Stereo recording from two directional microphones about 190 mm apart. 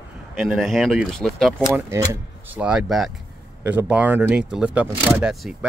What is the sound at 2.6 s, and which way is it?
Speech, 5° right (ahead or behind).